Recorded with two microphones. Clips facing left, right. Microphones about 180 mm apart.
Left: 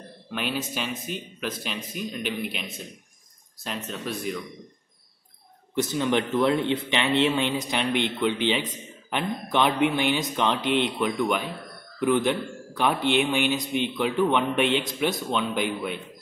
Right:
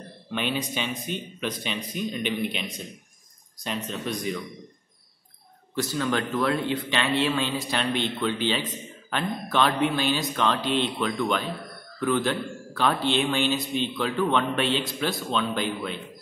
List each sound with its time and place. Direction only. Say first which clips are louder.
0.3 s speech: right 1 dB; 5° left (ahead or behind)
5.8 s a man's voice: left 2 dB; 20° left (ahead or behind)